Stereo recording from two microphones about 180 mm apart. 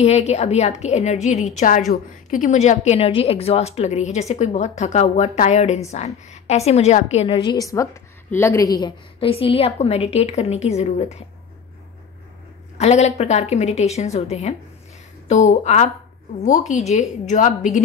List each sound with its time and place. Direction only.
0.0 s a woman's voice: 35° left (ahead or behind)
7.3 s a woman's voice: 20° left (ahead or behind); by 11.2 s 40° left (ahead or behind)
12.7 s a woman's voice: 40° left (ahead or behind)
15.5 s a woman's voice: 40° left (ahead or behind)